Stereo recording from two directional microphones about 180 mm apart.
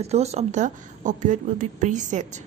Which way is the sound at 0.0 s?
35° right (ahead or behind).